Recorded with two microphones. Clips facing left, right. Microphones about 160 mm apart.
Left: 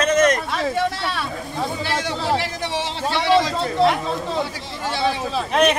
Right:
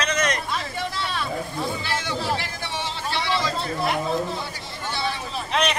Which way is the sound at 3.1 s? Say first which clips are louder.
Left 8 dB; 80° left.